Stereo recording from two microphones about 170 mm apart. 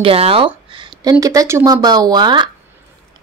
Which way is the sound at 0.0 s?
35° right (ahead or behind).